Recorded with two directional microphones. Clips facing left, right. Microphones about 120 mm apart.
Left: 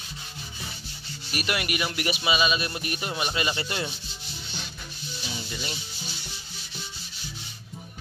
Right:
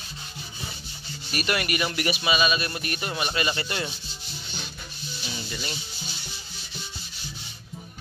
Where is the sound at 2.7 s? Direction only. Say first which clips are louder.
Even; 15° left (ahead or behind).